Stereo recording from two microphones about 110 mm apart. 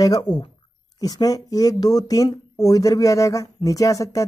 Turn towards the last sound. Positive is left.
turn(degrees=30)  # may be behind; listen again after turning